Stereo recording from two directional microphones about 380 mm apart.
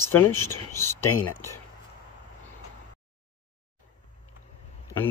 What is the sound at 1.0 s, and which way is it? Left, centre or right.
Speech, left.